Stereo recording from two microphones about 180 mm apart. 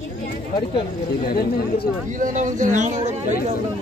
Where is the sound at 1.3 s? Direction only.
55° left (ahead or behind).